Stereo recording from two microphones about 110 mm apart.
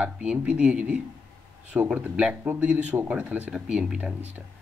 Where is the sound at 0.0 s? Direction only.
10° right (ahead or behind).